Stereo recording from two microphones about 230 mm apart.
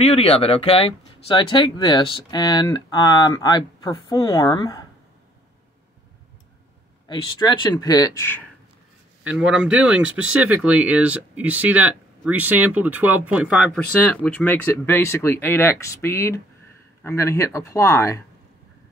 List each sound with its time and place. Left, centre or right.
0.1 s speech: left
7.1 s speech: centre
9.3 s speech: centre